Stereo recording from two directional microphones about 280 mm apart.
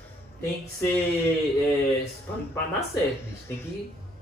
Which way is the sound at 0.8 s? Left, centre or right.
Centre.